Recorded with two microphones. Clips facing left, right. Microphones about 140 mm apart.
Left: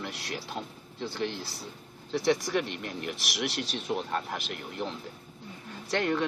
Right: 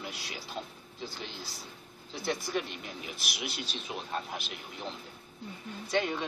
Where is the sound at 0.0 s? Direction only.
65° left (ahead or behind).